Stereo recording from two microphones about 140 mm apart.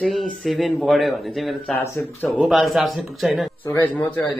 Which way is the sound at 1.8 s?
15° left (ahead or behind).